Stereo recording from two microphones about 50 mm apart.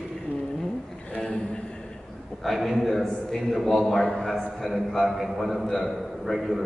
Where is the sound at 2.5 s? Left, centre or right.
Centre.